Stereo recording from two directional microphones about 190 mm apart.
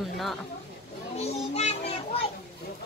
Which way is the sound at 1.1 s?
35° left (ahead or behind).